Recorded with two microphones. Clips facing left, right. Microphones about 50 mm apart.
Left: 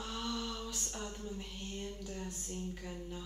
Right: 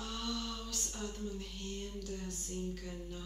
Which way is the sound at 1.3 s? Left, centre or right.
Centre.